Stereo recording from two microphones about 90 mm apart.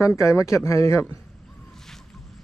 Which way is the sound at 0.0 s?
35° left (ahead or behind).